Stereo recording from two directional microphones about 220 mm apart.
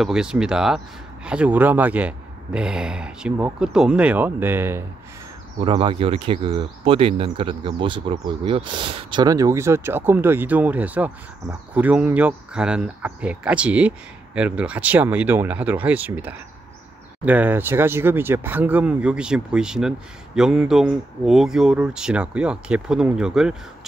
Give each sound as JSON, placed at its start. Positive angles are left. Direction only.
{"t": 0.0, "sound": "speech", "side_deg": -5}
{"t": 5.6, "sound": "speech", "side_deg": -20}